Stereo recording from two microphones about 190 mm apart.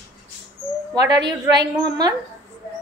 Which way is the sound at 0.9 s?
20° right (ahead or behind).